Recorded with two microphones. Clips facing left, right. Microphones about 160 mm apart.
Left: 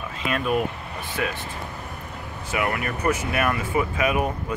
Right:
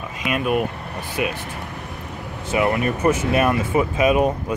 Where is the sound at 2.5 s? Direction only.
25° right (ahead or behind).